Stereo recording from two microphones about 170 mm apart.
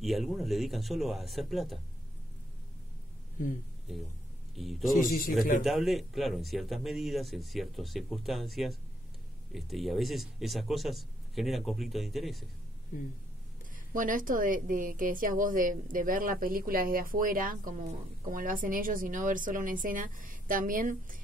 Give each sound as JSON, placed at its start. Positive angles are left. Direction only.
{"t": 0.0, "sound": "speech", "side_deg": 0}
{"t": 3.4, "sound": "speech", "side_deg": 55}
{"t": 4.6, "sound": "speech", "side_deg": 0}
{"t": 13.9, "sound": "a woman's voice", "side_deg": -50}